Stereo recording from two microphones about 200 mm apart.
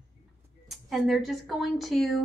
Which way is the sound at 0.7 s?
Centre (ahead or behind).